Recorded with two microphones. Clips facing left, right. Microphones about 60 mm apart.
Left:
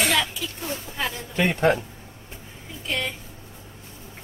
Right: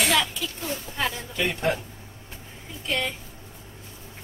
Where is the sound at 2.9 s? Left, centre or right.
Centre.